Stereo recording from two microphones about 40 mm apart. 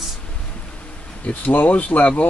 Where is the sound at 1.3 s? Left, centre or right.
Left.